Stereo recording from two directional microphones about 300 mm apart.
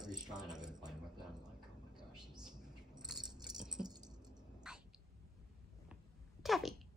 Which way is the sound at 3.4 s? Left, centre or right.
Centre.